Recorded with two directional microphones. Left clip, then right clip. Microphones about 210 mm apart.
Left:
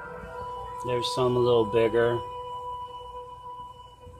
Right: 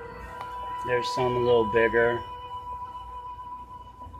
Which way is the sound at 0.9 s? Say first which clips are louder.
Left 1 dB; 25° left (ahead or behind).